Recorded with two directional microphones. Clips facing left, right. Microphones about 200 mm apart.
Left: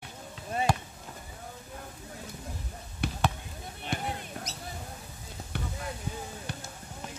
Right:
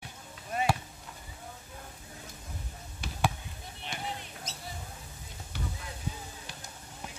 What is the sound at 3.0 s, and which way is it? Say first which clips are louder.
Basketball bounce: left 2 dB; 60° left (ahead or behind).